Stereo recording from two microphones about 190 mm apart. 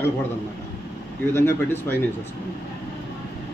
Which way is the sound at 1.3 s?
10° left (ahead or behind).